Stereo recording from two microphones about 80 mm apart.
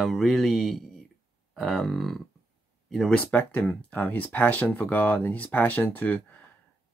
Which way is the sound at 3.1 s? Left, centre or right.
Left.